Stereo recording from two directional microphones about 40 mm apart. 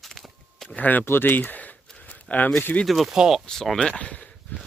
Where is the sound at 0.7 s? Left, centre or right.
Left.